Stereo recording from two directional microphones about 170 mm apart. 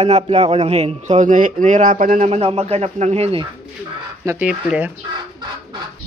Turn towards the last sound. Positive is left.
turn(degrees=-10)  # may be behind; listen again after turning